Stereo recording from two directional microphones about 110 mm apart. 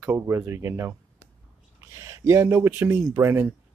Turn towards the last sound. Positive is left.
turn(degrees=-20)  # may be behind; listen again after turning